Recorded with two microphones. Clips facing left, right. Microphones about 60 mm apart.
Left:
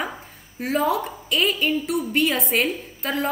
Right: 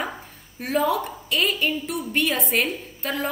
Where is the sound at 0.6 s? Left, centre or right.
Centre.